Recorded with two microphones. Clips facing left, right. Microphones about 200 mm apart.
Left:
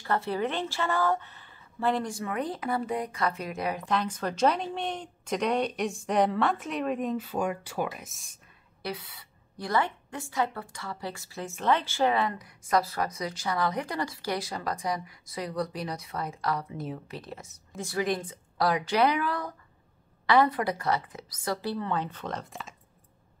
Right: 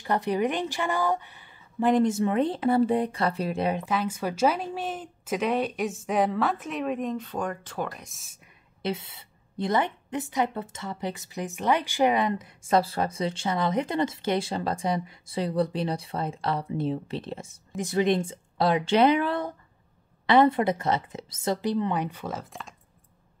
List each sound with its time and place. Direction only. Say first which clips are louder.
0.0 s a woman's voice: right 3 dB; 15° right (ahead or behind)
3.8 s a woman's voice: right 1 dB; 5° right (ahead or behind)
8.8 s a woman's voice: right 5 dB; 25° right (ahead or behind); by 22.8 s centre (ahead or behind)